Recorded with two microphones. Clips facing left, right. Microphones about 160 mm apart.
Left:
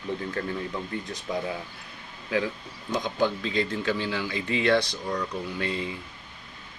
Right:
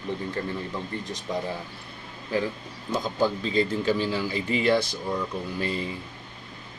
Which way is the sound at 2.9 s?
5° right (ahead or behind).